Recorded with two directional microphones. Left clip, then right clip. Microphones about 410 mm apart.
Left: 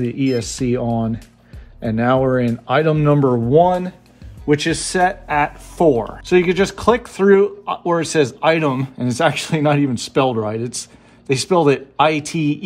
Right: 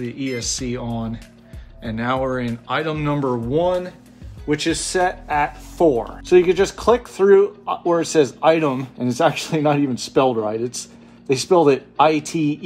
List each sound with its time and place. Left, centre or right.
0.1 s speech: centre